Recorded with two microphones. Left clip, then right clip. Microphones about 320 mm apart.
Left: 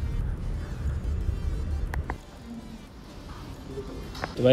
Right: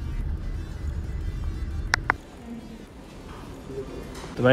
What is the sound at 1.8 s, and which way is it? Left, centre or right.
Music, left.